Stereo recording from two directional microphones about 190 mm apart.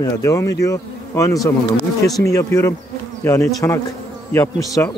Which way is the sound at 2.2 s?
15° left (ahead or behind).